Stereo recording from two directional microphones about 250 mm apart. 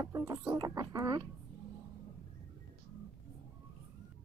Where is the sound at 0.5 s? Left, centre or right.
Centre.